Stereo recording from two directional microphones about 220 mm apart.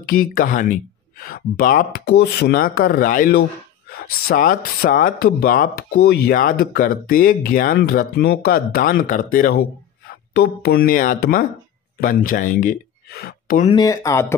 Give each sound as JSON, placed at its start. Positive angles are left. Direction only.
{"t": 0.0, "sound": "speech", "side_deg": 40}
{"t": 13.7, "sound": "speech", "side_deg": 15}